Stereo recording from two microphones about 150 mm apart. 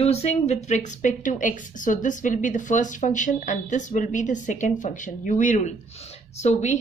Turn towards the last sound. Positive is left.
turn(degrees=50)  # may be behind; listen again after turning